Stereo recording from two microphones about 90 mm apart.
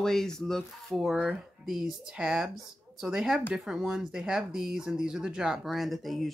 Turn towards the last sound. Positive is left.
turn(degrees=0)  # may be behind; listen again after turning